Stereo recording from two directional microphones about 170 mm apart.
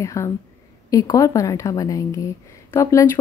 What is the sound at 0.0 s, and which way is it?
A woman's voice, 20° left (ahead or behind).